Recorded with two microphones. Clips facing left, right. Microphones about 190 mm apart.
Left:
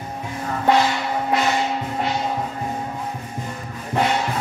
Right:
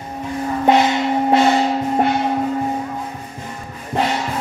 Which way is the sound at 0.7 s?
20° right (ahead or behind).